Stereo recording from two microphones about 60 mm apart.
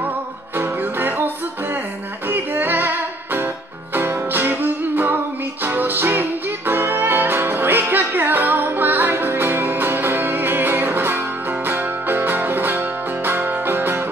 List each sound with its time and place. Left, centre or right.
0.6 s music: right